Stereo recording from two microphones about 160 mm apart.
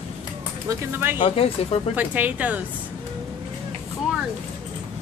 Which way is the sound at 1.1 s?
35° left (ahead or behind).